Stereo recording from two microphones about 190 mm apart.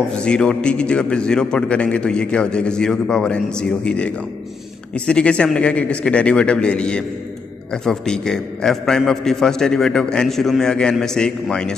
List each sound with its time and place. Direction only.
0.1 s a man's voice: 5° left (ahead or behind)